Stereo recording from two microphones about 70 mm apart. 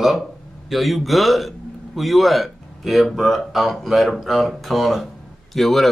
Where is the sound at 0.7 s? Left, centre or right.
Centre.